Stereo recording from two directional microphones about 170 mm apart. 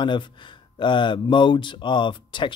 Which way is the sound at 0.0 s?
30° left (ahead or behind).